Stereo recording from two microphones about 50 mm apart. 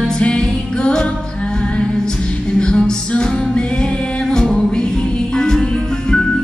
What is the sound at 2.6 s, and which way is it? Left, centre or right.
Music, centre.